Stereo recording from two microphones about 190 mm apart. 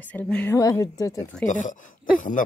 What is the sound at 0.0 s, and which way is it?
A woman's voice, 5° left (ahead or behind).